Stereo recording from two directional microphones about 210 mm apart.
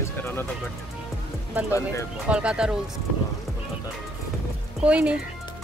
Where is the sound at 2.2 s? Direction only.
5° right (ahead or behind).